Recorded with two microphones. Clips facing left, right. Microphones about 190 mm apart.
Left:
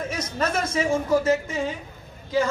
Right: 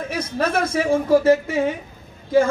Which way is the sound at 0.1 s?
60° right (ahead or behind).